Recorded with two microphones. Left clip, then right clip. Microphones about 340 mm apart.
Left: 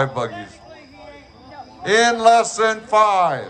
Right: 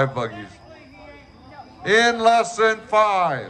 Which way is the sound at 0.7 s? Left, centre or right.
Left.